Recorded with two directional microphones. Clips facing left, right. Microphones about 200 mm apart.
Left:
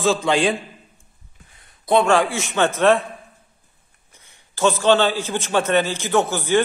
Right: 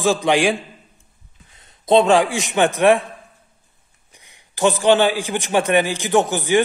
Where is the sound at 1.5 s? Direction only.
25° right (ahead or behind).